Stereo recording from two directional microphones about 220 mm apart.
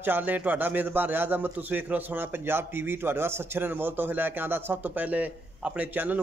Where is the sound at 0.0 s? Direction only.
10° right (ahead or behind).